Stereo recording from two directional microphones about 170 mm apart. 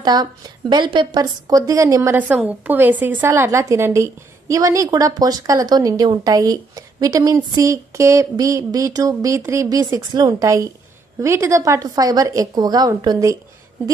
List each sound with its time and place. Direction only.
0.0 s a woman's voice: 25° right (ahead or behind)
2.1 s a woman's voice: 10° right (ahead or behind)